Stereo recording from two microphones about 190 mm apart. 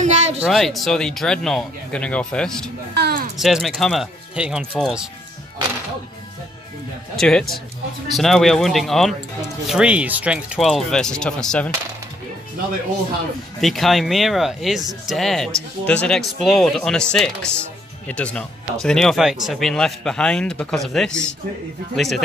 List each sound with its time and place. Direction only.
0.0 s a sound: 35° right (ahead or behind)
0.4 s speech: centre (ahead or behind)
2.9 s a sound: 55° right (ahead or behind)
3.3 s speech: centre (ahead or behind)
7.2 s speech: 5° left (ahead or behind)
13.6 s speech: centre (ahead or behind)